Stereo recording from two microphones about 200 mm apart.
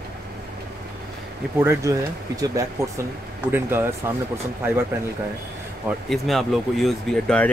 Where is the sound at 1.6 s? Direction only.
15° right (ahead or behind).